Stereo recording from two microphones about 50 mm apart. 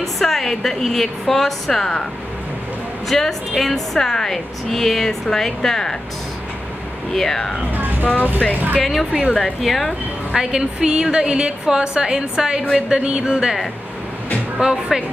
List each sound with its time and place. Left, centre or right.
0.0 s a woman's voice: centre
3.1 s a woman's voice: centre
7.2 s a woman's voice: centre
8.0 s speech: left
8.8 s a woman's voice: centre
10.3 s a woman's voice: centre
14.6 s a woman's voice: centre